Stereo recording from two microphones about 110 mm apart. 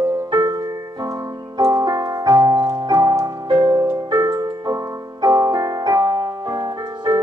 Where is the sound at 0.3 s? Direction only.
35° right (ahead or behind).